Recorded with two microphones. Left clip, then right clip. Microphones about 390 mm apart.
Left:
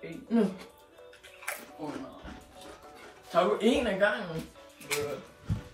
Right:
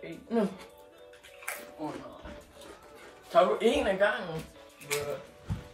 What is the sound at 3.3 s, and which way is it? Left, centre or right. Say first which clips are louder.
Speech: right 2 dB; right.